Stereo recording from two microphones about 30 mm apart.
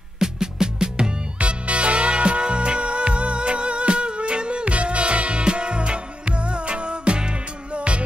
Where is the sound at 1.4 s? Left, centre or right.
Right.